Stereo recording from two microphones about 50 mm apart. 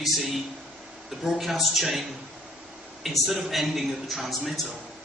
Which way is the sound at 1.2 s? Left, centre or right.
Centre.